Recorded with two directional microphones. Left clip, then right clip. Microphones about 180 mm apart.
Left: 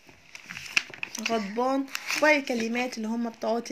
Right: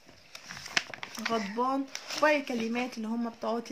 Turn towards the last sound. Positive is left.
turn(degrees=15)  # may be behind; listen again after turning